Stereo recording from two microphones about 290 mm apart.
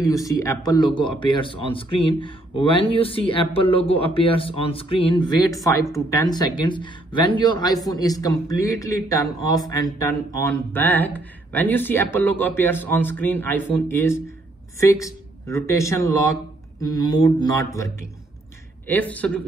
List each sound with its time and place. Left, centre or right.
0.1 s speech: centre
18.9 s a man's voice: centre